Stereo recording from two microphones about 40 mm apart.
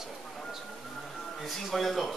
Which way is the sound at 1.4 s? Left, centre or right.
Centre.